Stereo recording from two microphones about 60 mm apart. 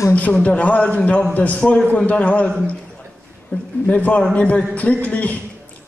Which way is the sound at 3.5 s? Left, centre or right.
Left.